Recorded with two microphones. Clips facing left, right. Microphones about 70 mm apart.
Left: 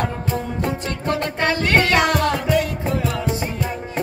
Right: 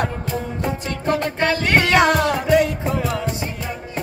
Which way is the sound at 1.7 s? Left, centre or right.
Right.